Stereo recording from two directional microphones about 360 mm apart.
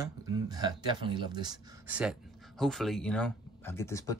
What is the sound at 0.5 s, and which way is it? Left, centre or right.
Speech, centre.